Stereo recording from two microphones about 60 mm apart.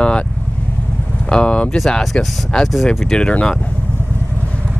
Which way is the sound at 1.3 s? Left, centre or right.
Centre.